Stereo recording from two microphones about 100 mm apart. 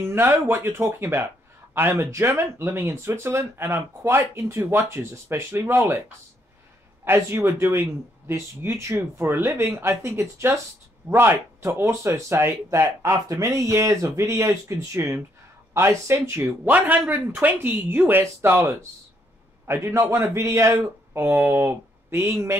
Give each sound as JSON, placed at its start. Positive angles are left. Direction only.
{"t": 0.0, "sound": "a man's voice", "side_deg": -25}
{"t": 7.1, "sound": "a man's voice", "side_deg": -20}
{"t": 16.7, "sound": "a man's voice", "side_deg": -20}